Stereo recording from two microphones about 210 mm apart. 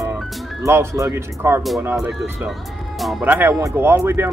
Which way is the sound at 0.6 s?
15° right (ahead or behind).